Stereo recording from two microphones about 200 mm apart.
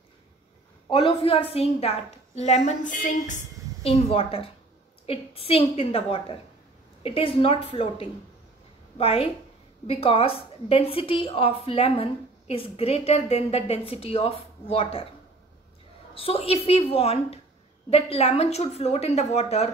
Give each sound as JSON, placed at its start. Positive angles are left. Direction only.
{"t": 0.8, "sound": "a woman's voice", "side_deg": 25}
{"t": 3.8, "sound": "a woman's voice", "side_deg": 30}
{"t": 16.2, "sound": "a woman's voice", "side_deg": 30}